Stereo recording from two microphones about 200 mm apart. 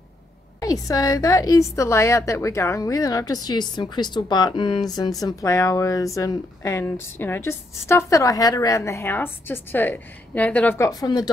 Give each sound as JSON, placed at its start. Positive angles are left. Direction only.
{"t": 0.6, "sound": "speech", "side_deg": 15}